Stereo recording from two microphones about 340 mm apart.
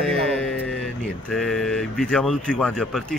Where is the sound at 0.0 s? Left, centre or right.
Centre.